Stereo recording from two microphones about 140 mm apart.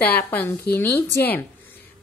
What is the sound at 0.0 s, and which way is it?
A woman's voice, 15° left (ahead or behind).